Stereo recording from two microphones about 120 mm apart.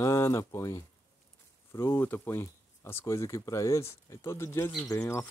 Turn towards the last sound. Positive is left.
turn(degrees=25)  # may be behind; listen again after turning